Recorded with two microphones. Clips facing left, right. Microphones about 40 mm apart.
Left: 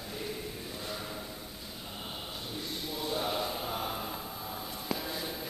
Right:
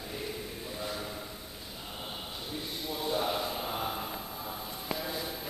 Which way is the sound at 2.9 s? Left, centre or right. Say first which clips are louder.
Right 2 dB; centre.